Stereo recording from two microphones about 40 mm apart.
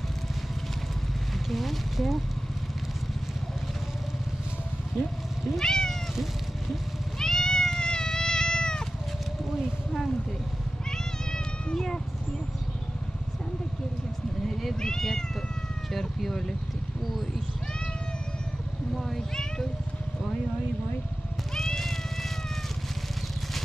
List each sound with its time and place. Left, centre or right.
1.5 s speech: centre
5.6 s cat: centre
7.2 s cat: centre
10.9 s cat: centre
14.4 s cat: centre
14.8 s cat: centre
19.0 s cat: centre
21.5 s cat: centre